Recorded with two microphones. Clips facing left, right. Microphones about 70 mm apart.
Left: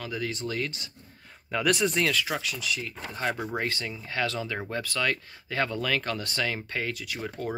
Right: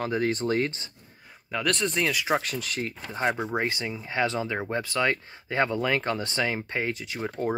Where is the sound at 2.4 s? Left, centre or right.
Right.